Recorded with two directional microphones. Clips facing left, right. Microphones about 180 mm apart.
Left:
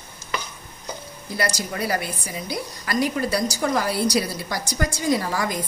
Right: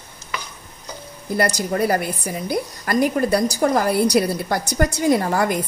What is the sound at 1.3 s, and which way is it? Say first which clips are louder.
A woman's voice: right 6 dB; 55° right (ahead or behind).